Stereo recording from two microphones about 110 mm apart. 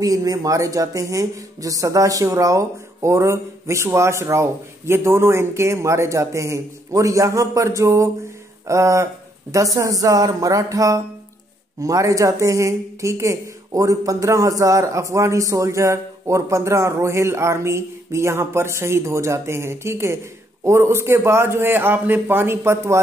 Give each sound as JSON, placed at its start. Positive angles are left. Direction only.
{"t": 0.0, "sound": "speech", "side_deg": -30}
{"t": 9.8, "sound": "a sound", "side_deg": -30}
{"t": 11.8, "sound": "speech", "side_deg": -30}